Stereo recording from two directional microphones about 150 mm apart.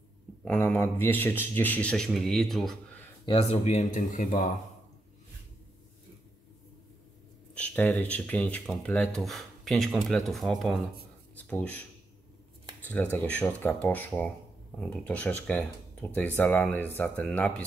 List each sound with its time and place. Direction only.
0.5 s speech: 10° left (ahead or behind)
3.3 s speech: 40° left (ahead or behind); by 4.5 s 60° left (ahead or behind)
7.5 s speech: 10° left (ahead or behind)
12.9 s speech: 10° left (ahead or behind)